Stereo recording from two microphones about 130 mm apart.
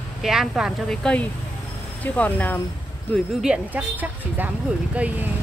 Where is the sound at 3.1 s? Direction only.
5° right (ahead or behind).